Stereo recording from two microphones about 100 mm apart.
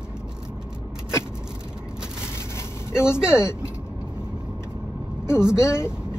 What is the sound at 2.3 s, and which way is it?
Vehicle, 25° left (ahead or behind).